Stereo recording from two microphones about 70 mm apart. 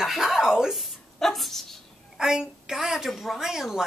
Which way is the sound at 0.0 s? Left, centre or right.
Centre.